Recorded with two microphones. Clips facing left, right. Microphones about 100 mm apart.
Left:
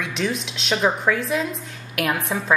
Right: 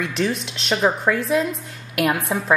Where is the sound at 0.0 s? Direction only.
Centre (ahead or behind).